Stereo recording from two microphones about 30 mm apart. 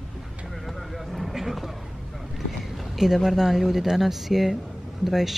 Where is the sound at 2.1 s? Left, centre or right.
Centre.